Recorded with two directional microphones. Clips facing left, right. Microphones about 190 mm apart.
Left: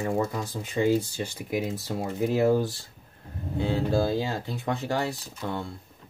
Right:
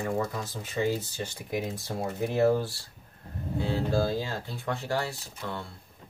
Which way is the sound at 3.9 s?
20° left (ahead or behind).